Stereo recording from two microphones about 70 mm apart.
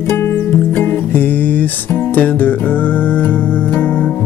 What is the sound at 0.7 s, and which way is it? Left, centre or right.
Music, left.